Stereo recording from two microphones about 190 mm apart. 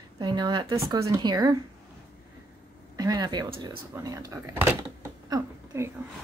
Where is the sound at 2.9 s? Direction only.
20° right (ahead or behind).